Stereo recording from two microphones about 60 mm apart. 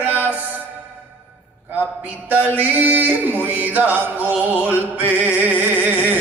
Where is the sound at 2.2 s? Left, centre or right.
Right.